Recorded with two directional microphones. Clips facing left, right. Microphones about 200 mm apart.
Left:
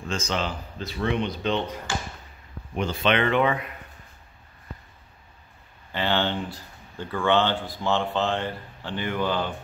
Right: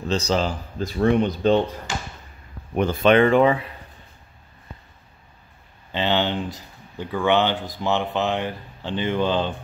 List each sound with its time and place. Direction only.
0.0 s speech: 35° right (ahead or behind)
2.7 s speech: 50° right (ahead or behind); by 3.7 s 30° right (ahead or behind)
5.9 s speech: 20° right (ahead or behind)